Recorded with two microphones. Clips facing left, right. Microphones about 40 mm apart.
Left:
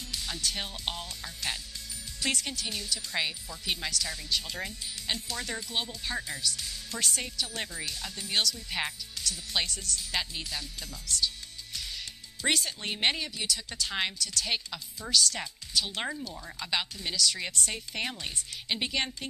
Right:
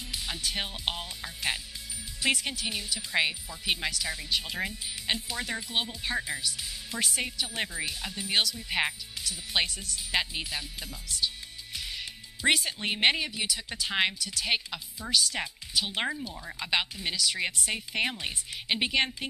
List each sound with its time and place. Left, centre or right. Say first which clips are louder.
0.1 s speech: right 1 dB; centre